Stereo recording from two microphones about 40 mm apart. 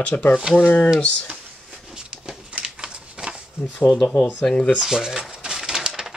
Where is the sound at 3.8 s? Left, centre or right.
Left.